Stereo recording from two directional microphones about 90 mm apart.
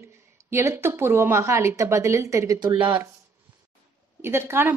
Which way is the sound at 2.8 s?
20° right (ahead or behind).